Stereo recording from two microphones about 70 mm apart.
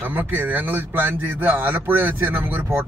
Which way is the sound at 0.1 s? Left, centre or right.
Right.